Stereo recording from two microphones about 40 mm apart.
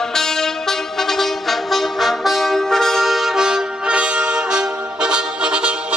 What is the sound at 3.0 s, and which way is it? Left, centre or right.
Music, centre.